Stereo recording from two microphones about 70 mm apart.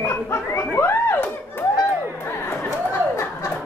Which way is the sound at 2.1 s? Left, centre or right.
Left.